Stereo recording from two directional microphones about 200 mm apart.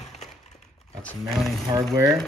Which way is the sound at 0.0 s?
35° left (ahead or behind).